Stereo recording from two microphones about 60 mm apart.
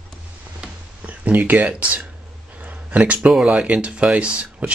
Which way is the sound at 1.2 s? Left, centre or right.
Right.